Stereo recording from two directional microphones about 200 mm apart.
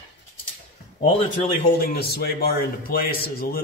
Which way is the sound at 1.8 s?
50° left (ahead or behind).